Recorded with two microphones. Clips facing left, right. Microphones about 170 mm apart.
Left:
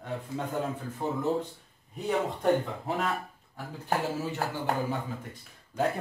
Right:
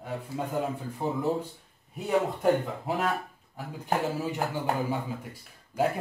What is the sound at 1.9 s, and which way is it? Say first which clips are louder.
Speech: right 2 dB; centre (ahead or behind).